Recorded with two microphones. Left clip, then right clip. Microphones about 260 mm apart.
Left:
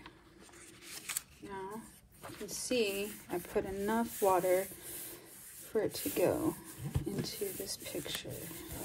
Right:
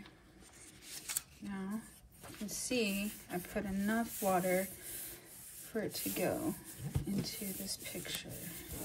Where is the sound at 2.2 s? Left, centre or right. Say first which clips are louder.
Left 3 dB; centre.